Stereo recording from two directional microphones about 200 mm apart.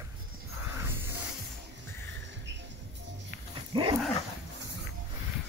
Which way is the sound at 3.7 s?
25° right (ahead or behind).